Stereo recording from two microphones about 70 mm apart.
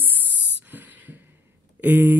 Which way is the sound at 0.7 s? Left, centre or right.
Right.